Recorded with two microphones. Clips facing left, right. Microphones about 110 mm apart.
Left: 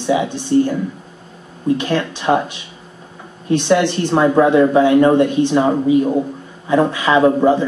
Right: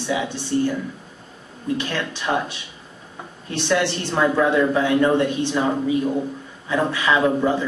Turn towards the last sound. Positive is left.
turn(degrees=25)  # may be behind; listen again after turning